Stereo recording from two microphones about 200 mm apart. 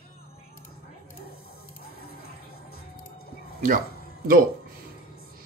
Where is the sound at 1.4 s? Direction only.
30° left (ahead or behind).